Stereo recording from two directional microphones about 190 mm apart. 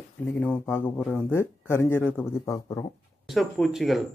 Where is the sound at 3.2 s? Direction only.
Centre (ahead or behind).